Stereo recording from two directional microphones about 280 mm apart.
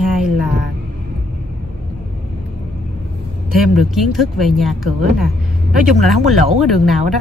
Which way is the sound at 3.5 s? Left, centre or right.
Centre.